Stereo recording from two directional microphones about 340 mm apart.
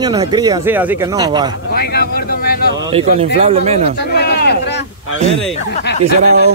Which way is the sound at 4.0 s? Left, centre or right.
Left.